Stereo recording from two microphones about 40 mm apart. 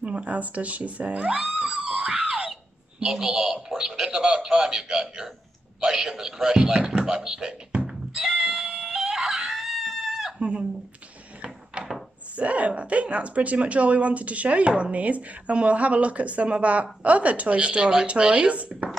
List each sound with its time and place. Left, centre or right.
0.0 s speech: right
1.2 s screaming: centre
2.2 s speech: right
7.8 s screaming: centre
11.4 s a sound: right
12.4 s speech: right